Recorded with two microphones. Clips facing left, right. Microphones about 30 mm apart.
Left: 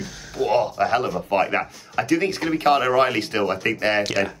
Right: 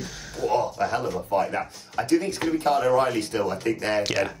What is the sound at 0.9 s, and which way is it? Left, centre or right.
Speech, left.